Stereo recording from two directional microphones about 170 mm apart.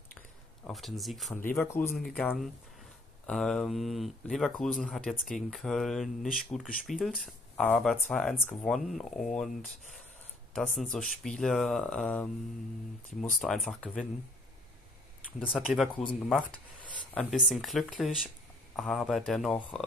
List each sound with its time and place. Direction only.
0.7 s speech: centre (ahead or behind)
1.3 s speech: 10° left (ahead or behind)
2.1 s speech: centre (ahead or behind)
10.8 s speech: 5° left (ahead or behind)
13.5 s speech: centre (ahead or behind)
15.3 s speech: centre (ahead or behind)
15.9 s speech: 30° left (ahead or behind)
17.1 s speech: 5° left (ahead or behind)